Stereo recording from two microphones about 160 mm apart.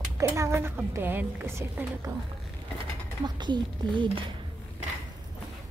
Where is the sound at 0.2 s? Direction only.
15° right (ahead or behind).